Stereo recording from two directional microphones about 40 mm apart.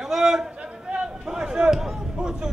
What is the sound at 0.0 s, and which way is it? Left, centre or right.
Chatter, centre.